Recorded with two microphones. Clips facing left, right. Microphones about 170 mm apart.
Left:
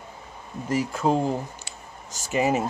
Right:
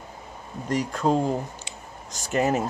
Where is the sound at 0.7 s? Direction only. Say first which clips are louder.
Even; 5° left (ahead or behind).